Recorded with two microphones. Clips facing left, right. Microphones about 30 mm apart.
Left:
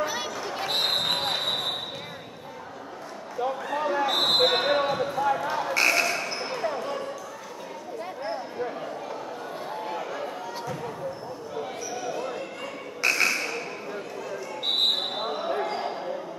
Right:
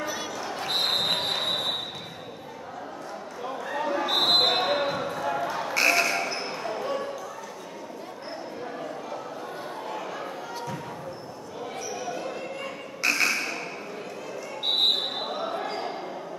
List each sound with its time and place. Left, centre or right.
0.4 s basketball bounce: centre
3.4 s basketball bounce: centre
9.8 s basketball bounce: centre
11.9 s basketball bounce: centre
13.0 s a sound: centre
14.6 s basketball bounce: centre